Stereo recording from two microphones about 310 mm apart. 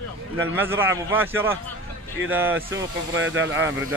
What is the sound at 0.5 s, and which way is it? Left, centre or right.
A man's voice, centre.